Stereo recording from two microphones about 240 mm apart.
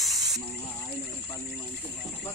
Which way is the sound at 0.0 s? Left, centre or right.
Centre.